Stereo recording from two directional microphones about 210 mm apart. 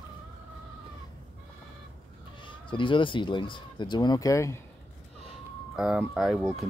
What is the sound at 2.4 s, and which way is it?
Speech, 25° left (ahead or behind).